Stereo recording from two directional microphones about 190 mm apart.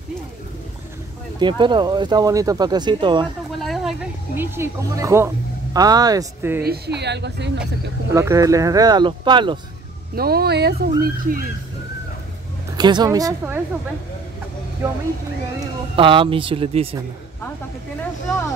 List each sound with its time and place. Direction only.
1.4 s speech: 25° right (ahead or behind)
3.5 s speech: centre (ahead or behind); by 6.6 s 15° right (ahead or behind)
6.6 s speech: 60° right (ahead or behind)
8.1 s speech: 15° right (ahead or behind)
10.1 s speech: 55° right (ahead or behind)
12.7 s speech: 20° right (ahead or behind)
15.6 s speech: 25° right (ahead or behind)